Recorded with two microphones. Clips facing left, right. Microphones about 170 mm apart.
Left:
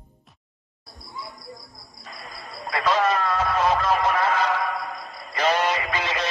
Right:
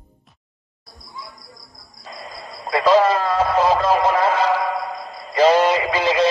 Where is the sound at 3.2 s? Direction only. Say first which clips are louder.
Right 5 dB; 30° right (ahead or behind).